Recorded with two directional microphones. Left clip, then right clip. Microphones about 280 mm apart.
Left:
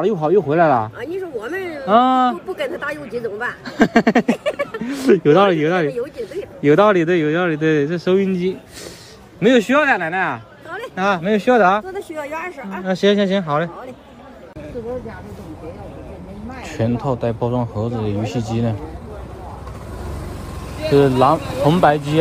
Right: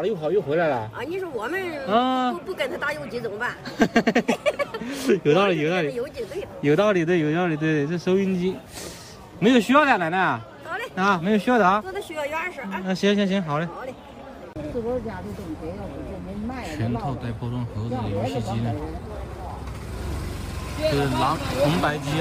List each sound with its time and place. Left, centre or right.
0.0 s speech: centre
0.9 s speech: centre
16.6 s speech: centre
20.8 s speech: centre